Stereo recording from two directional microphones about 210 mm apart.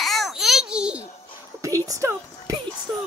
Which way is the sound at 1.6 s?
15° right (ahead or behind).